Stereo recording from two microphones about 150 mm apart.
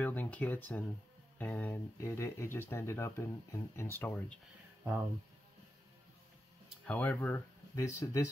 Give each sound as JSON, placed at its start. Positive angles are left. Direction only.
{"t": 0.0, "sound": "speech", "side_deg": 10}
{"t": 6.9, "sound": "speech", "side_deg": 10}